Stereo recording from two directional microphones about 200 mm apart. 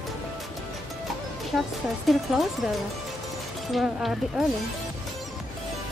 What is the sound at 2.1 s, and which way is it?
Speech, centre (ahead or behind).